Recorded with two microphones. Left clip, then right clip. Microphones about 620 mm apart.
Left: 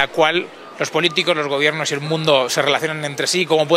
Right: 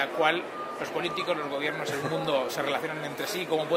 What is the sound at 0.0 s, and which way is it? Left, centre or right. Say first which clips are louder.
Speech: left 9 dB; left.